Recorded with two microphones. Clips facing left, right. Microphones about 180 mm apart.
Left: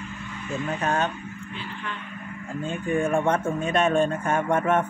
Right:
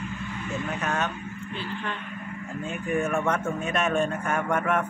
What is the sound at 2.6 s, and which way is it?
Speech, 30° left (ahead or behind).